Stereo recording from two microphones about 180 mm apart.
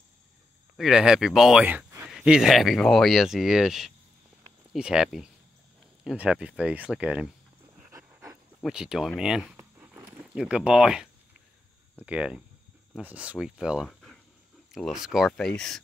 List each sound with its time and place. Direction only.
0.7 s speech: 5° right (ahead or behind)
7.9 s pant: 20° right (ahead or behind)
8.6 s speech: 5° right (ahead or behind)
9.6 s a sound: 10° right (ahead or behind)
12.1 s speech: 5° right (ahead or behind)